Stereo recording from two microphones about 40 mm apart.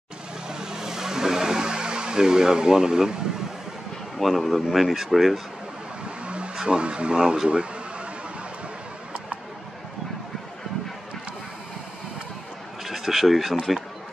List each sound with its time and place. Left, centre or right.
0.5 s music: centre
4.2 s speech: centre
6.0 s vehicle: right
7.4 s a sound: right
12.8 s speech: centre